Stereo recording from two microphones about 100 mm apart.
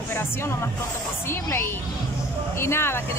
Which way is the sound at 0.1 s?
25° left (ahead or behind).